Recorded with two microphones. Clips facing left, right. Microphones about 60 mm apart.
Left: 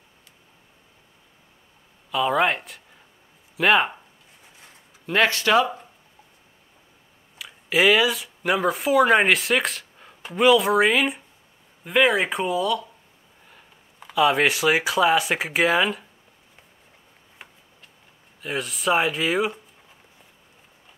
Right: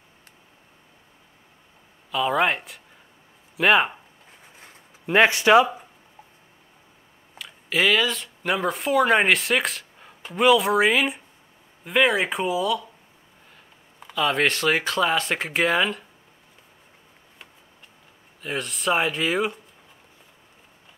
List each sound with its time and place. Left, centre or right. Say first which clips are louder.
2.0 s speech: left 1 dB; centre
5.0 s speech: right 3 dB; centre
7.3 s speech: left 3 dB; centre
18.4 s speech: left 1 dB; centre